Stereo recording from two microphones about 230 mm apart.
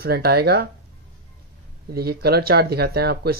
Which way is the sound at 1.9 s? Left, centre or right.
Right.